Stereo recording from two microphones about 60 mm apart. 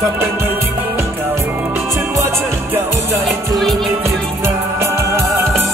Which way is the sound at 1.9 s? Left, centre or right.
Right.